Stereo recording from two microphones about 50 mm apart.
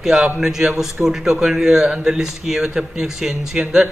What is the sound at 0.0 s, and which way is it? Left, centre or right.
Speech, centre.